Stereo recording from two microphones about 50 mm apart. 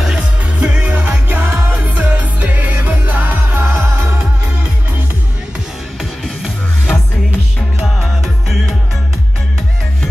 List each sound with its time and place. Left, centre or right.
0.6 s music: right
1.4 s music: right
1.7 s music: right
7.8 s music: centre